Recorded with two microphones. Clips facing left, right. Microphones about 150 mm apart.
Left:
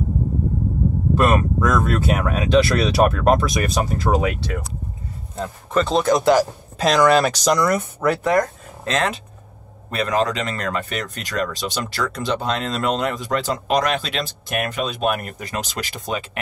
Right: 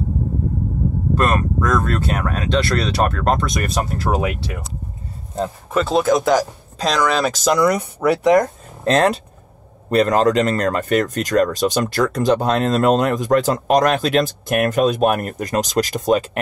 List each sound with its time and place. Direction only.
1.1 s speech: 5° left (ahead or behind)
5.7 s speech: 5° right (ahead or behind)
8.8 s speech: 40° right (ahead or behind)